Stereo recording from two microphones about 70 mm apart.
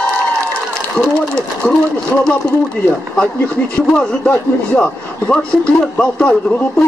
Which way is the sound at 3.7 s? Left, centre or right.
Centre.